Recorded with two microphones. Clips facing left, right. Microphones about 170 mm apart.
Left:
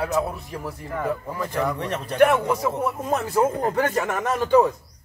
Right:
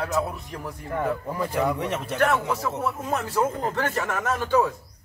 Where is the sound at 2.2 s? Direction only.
20° left (ahead or behind).